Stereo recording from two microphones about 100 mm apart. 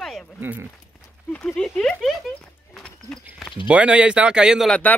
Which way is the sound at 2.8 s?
5° left (ahead or behind).